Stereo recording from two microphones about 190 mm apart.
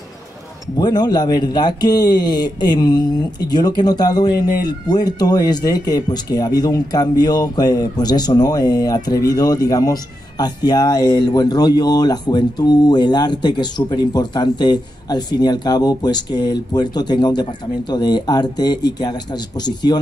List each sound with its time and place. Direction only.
0.7 s a man's voice: 20° left (ahead or behind)